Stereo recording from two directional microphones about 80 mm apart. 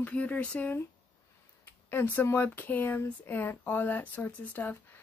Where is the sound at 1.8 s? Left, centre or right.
Left.